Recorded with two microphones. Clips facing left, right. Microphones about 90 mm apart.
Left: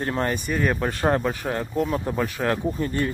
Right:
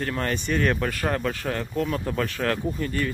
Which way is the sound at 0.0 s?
25° left (ahead or behind).